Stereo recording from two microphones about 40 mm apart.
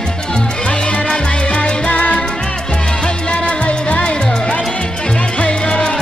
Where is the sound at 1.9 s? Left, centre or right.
Left.